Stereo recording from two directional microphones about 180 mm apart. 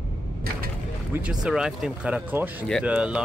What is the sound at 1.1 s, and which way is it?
Speech, 5° right (ahead or behind).